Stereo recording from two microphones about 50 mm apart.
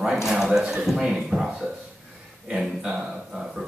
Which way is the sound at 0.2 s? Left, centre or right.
Centre.